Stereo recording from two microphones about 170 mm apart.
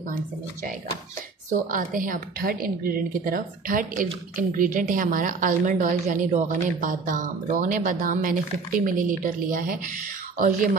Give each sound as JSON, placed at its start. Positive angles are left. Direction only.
{"t": 1.7, "sound": "a woman's voice", "side_deg": -50}